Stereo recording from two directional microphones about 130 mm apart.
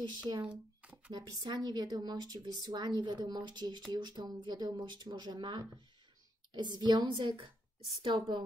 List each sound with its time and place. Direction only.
0.0 s speech: 35° right (ahead or behind)
0.5 s a sound: 10° right (ahead or behind)
1.1 s speech: 30° right (ahead or behind)